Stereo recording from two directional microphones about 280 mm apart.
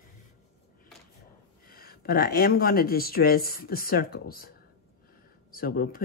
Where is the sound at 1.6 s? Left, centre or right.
Left.